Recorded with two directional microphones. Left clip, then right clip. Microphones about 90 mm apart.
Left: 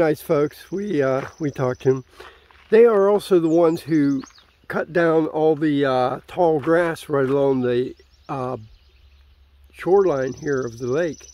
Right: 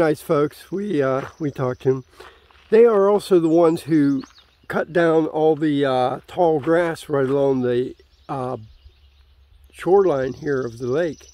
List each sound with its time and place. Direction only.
0.0 s speech: 15° right (ahead or behind)
1.4 s speech: centre (ahead or behind)
2.7 s speech: 10° right (ahead or behind); by 4.1 s 35° right (ahead or behind)
4.6 s speech: 25° right (ahead or behind)
9.8 s speech: 25° right (ahead or behind)